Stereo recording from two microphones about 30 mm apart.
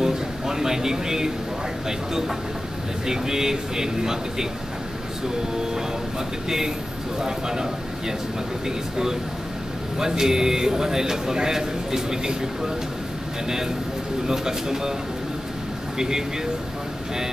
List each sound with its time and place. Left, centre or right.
0.0 s a sound: centre
3.1 s a man's voice: centre
7.2 s speech: right
8.6 s a man's voice: centre
14.2 s a man's voice: centre
16.0 s speech: centre